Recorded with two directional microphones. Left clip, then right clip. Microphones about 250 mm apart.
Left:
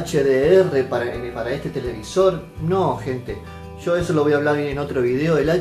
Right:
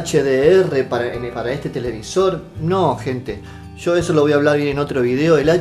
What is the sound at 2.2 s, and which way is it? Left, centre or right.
Speech, right.